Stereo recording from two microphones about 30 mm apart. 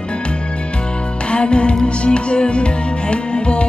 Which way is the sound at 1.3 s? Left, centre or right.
Left.